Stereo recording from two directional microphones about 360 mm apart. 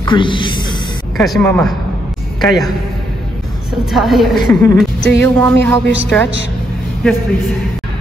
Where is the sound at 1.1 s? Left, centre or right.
Centre.